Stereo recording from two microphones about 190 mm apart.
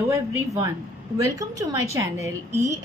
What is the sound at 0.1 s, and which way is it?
A woman's voice, 15° right (ahead or behind).